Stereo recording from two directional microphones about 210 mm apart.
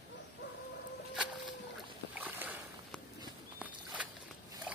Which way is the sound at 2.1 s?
10° right (ahead or behind).